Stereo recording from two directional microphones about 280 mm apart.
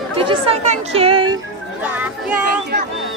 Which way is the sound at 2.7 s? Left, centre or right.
Right.